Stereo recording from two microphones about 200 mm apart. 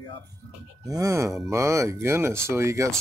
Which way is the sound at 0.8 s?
15° right (ahead or behind).